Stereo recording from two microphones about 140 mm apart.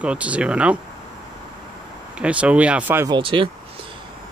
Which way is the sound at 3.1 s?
40° right (ahead or behind).